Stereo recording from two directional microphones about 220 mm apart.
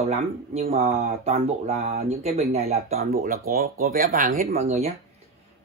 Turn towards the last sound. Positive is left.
turn(degrees=-30)  # may be behind; listen again after turning